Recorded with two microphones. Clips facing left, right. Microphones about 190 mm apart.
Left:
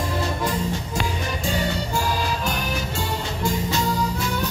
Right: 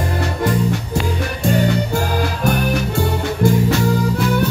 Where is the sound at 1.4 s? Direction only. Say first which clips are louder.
Right 10 dB; 60° right (ahead or behind).